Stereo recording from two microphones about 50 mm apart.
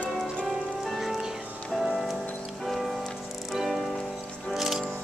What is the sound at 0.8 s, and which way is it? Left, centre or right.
Music, centre.